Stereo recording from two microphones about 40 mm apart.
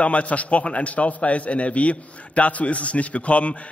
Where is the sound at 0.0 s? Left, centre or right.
Left.